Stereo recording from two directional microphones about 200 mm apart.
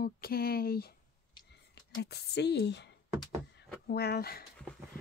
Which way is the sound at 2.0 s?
55° left (ahead or behind).